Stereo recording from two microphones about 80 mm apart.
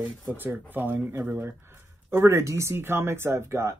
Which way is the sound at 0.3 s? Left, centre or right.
Right.